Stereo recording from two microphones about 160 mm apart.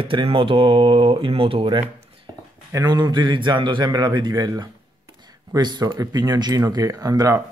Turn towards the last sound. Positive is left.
turn(degrees=-25)  # may be behind; listen again after turning